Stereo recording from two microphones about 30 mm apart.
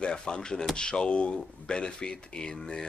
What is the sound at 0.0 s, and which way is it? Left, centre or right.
Speech, left.